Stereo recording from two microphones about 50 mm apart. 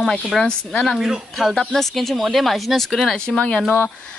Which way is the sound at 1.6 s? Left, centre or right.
Centre.